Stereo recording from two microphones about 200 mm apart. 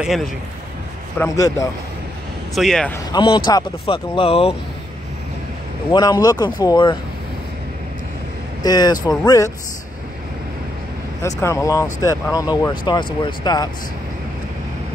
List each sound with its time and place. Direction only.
0.0 s a man's voice: centre (ahead or behind)
1.1 s speech: 15° left (ahead or behind)
2.5 s a man's voice: centre (ahead or behind)
3.1 s speech: 25° left (ahead or behind)
5.9 s speech: 20° left (ahead or behind)
8.6 s speech: 20° left (ahead or behind)
11.2 s speech: 15° left (ahead or behind)